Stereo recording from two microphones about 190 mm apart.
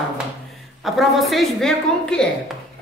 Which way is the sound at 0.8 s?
Centre (ahead or behind).